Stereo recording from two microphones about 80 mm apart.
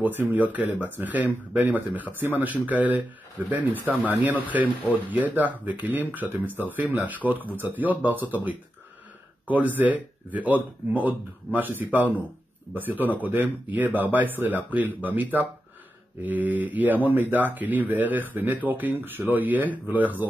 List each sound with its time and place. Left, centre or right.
0.0 s speech: right